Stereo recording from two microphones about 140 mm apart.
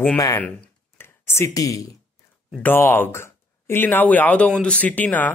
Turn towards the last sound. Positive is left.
turn(degrees=10)  # may be behind; listen again after turning